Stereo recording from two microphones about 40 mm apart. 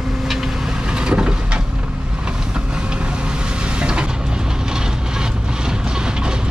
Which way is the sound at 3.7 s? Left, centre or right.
Right.